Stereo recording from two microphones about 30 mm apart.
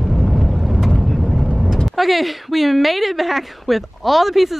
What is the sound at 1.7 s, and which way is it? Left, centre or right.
Speech, centre.